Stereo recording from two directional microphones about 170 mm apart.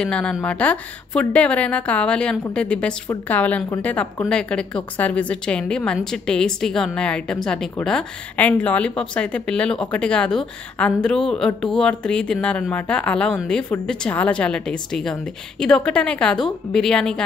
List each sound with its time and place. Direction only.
0.0 s a woman's voice: 5° left (ahead or behind)